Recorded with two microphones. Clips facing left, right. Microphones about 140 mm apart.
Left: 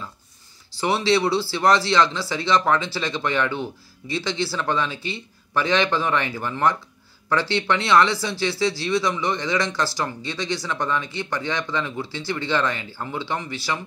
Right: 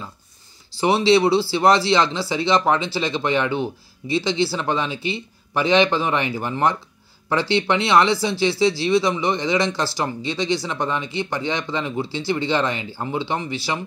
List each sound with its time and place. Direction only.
0.7 s speech: 15° right (ahead or behind)